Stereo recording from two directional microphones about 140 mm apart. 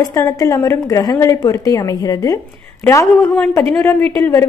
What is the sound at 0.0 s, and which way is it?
Speech, 25° left (ahead or behind).